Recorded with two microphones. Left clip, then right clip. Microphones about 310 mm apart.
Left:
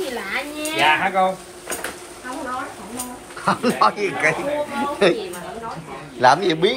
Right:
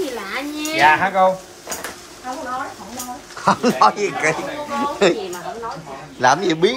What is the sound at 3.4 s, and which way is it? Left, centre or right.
Speech, centre.